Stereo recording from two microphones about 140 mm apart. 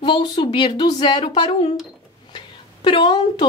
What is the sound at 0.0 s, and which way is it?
Speech, 35° left (ahead or behind).